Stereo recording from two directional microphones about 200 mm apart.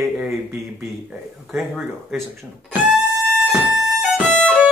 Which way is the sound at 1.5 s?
Centre (ahead or behind).